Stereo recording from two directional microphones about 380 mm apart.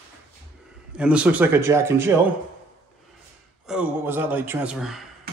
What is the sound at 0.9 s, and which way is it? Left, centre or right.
A man's voice, centre.